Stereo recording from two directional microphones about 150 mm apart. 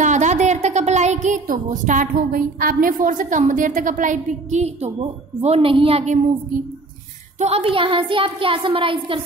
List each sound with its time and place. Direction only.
0.0 s a woman's voice: 50° right (ahead or behind)
7.3 s a woman's voice: 45° right (ahead or behind)